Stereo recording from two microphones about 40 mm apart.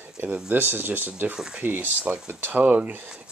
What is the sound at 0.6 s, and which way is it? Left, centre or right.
Speech, right.